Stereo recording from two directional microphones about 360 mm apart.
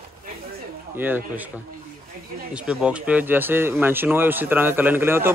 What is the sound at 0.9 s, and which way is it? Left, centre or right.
Speech, centre.